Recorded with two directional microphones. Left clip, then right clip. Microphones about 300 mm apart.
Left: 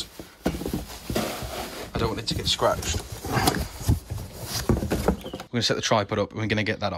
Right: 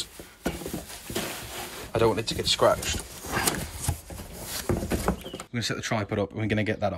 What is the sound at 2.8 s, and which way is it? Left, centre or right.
Dog, centre.